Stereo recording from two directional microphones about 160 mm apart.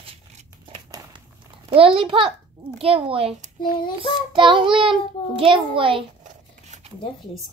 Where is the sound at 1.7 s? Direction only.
35° right (ahead or behind).